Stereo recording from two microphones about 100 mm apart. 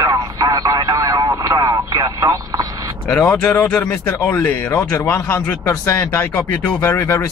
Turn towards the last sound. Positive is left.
turn(degrees=25)  # may be behind; listen again after turning